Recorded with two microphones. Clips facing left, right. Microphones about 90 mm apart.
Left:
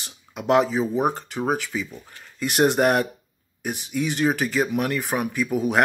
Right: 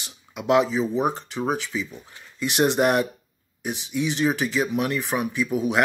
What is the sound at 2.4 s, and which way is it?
Speech, 45° left (ahead or behind).